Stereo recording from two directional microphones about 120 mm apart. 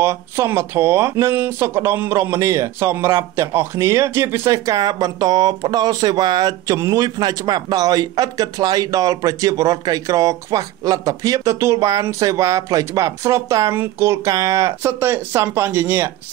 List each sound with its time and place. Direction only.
0.0 s speech: 20° right (ahead or behind)